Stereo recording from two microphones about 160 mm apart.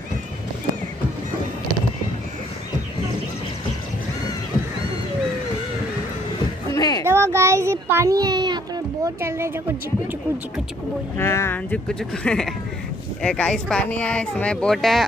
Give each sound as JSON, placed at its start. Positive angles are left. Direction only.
{"t": 6.7, "sound": "a sound", "side_deg": 20}
{"t": 7.1, "sound": "child singing", "side_deg": -15}
{"t": 11.1, "sound": "speech", "side_deg": 15}